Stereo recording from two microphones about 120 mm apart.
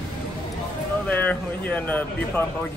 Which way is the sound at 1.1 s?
15° left (ahead or behind).